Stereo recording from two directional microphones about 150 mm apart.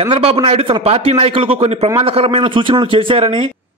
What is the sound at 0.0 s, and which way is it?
A man's voice, 40° right (ahead or behind).